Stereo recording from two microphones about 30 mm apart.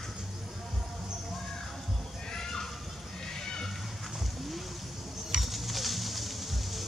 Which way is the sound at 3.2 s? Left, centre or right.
Left.